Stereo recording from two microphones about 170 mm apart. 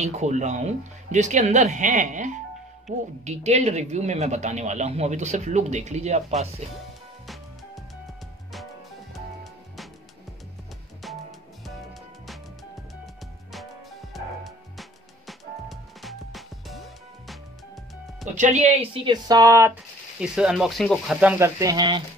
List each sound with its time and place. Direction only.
0.0 s speech: 45° right (ahead or behind)
11.0 s music: centre (ahead or behind)
13.0 s music: centre (ahead or behind)
18.3 s speech: 45° right (ahead or behind)
19.2 s speech: 20° right (ahead or behind)
20.2 s speech: 5° right (ahead or behind)
21.2 s speech: 10° right (ahead or behind)
21.5 s speech: 20° right (ahead or behind)